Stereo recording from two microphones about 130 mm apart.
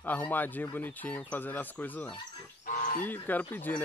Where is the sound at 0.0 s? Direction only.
15° left (ahead or behind).